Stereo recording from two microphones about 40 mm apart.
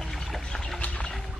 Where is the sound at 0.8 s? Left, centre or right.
Left.